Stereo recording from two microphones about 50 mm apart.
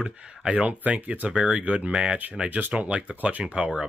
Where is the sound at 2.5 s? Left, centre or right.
Right.